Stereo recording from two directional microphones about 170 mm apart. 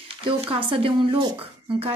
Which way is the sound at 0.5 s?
30° right (ahead or behind).